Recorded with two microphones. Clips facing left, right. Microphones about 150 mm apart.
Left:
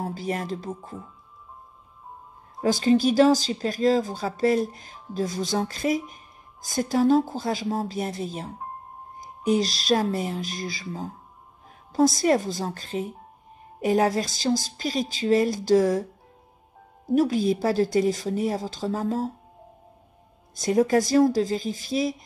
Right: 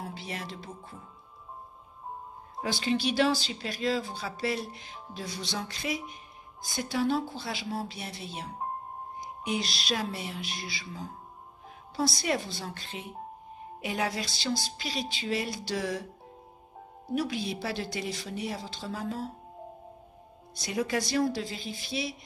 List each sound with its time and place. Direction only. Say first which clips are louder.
0.0 s speech: left 9 dB; 45° left (ahead or behind)
2.6 s speech: left 9 dB; 40° left (ahead or behind)
17.1 s speech: left 10 dB; 45° left (ahead or behind)
20.5 s speech: left 10 dB; 45° left (ahead or behind)